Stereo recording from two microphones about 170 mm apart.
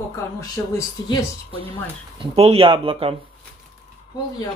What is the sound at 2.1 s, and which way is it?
Speech, 35° right (ahead or behind).